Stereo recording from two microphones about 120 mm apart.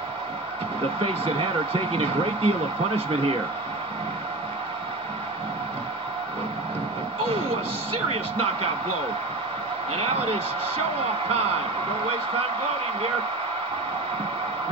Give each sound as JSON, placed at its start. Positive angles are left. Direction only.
{"t": 1.0, "sound": "speech", "side_deg": -50}
{"t": 8.1, "sound": "speech", "side_deg": -55}
{"t": 9.9, "sound": "speech", "side_deg": -60}